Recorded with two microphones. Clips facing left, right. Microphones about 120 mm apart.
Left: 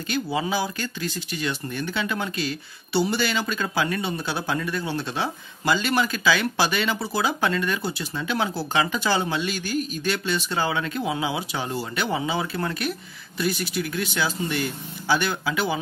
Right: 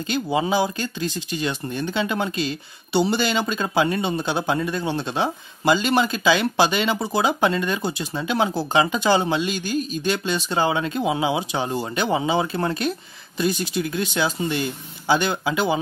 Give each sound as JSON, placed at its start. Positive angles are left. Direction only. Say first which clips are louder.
{"t": 0.1, "sound": "speech", "louder": "right 4 dB", "side_deg": -25}